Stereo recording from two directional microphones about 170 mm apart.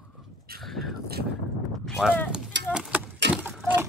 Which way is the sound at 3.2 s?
90° right.